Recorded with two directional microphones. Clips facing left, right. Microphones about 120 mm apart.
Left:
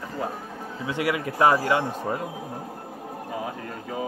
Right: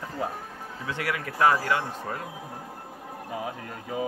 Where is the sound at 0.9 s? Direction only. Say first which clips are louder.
Left 5 dB; 15° left (ahead or behind).